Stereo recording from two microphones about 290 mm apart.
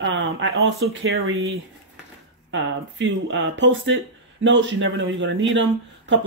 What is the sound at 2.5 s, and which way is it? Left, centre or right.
Speech, right.